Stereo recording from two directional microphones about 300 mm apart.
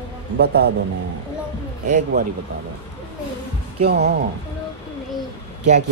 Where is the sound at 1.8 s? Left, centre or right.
Right.